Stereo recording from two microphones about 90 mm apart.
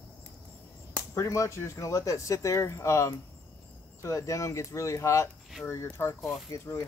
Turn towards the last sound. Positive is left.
turn(degrees=30)  # may be behind; listen again after turning